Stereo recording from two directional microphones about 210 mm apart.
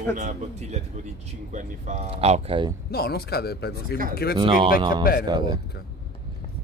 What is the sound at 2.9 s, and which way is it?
Speech, 50° left (ahead or behind).